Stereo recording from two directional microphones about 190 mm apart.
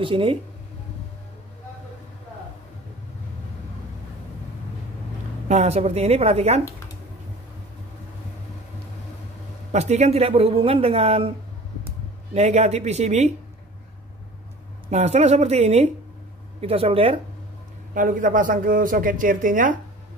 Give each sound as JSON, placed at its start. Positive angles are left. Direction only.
{"t": 0.0, "sound": "speech", "side_deg": -25}
{"t": 5.5, "sound": "a man's voice", "side_deg": -35}
{"t": 9.7, "sound": "a man's voice", "side_deg": -35}
{"t": 12.4, "sound": "a man's voice", "side_deg": -35}
{"t": 14.9, "sound": "a man's voice", "side_deg": -35}
{"t": 17.9, "sound": "speech", "side_deg": -45}